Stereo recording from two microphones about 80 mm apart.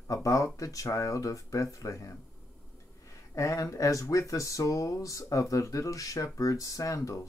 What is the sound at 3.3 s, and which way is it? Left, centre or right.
Speech, left.